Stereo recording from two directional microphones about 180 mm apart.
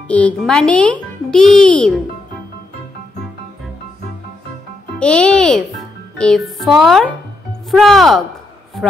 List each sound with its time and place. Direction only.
0.1 s a child's voice: 5° left (ahead or behind)
4.9 s a child's voice: 5° left (ahead or behind)